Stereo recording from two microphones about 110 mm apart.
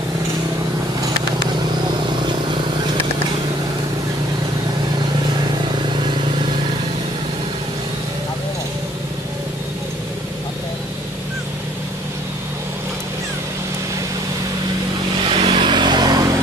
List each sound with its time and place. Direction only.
15.2 s vehicle: 50° right (ahead or behind)